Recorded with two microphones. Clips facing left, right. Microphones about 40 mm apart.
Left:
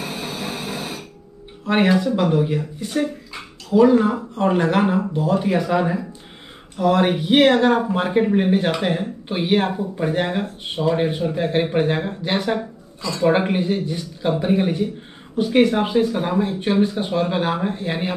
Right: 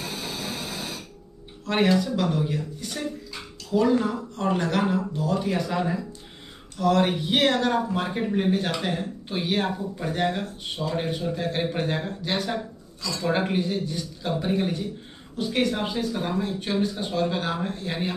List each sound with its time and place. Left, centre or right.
0.0 s printer: left
1.6 s speech: left